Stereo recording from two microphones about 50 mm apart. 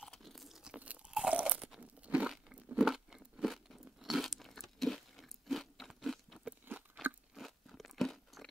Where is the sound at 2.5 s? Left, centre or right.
Centre.